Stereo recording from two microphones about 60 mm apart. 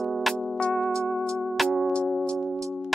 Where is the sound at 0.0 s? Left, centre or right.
Centre.